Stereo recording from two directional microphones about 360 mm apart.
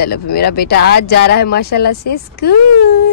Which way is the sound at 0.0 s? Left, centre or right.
Left.